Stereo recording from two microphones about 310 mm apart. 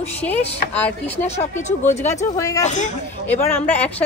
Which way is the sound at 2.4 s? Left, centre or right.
Centre.